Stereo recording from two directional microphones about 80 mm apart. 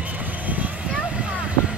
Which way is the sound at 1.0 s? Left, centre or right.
Centre.